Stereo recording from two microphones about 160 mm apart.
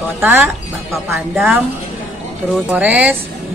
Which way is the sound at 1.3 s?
Centre (ahead or behind).